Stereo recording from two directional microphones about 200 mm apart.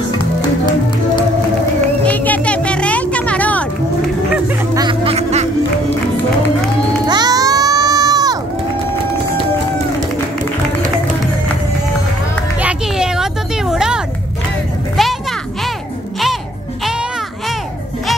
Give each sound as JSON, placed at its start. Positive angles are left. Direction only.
{"t": 2.0, "sound": "music", "side_deg": 10}
{"t": 4.7, "sound": "music", "side_deg": -25}
{"t": 7.1, "sound": "music", "side_deg": -20}
{"t": 12.5, "sound": "a sound", "side_deg": -5}
{"t": 15.0, "sound": "music", "side_deg": 0}